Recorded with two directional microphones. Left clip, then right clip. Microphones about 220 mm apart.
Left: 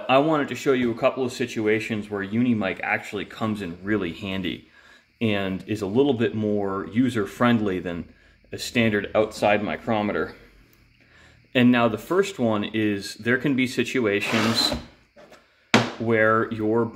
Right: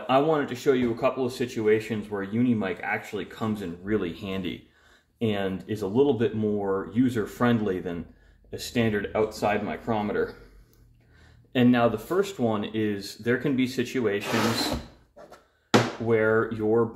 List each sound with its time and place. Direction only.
0.0 s speech: 35° left (ahead or behind)
11.5 s speech: 30° left (ahead or behind)
16.1 s speech: 35° left (ahead or behind)